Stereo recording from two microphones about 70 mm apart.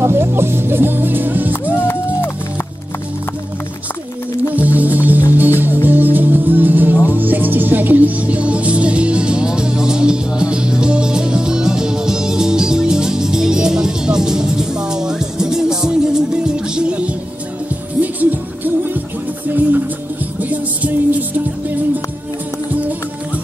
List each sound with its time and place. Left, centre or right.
0.0 s speech: right
1.5 s music: left
4.6 s music: right
18.0 s music: right
20.3 s music: right